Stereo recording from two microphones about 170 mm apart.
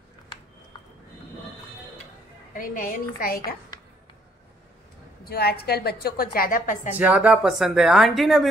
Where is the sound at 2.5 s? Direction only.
50° left (ahead or behind).